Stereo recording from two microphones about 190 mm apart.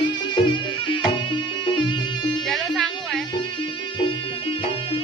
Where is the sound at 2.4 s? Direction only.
5° left (ahead or behind).